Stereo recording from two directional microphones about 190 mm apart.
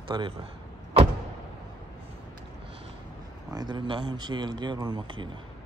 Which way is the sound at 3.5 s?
25° right (ahead or behind).